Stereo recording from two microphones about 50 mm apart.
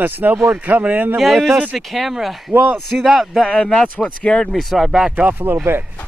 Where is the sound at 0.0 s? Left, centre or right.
Right.